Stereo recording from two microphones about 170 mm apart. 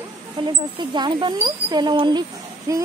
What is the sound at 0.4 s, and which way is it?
Speech, 30° right (ahead or behind).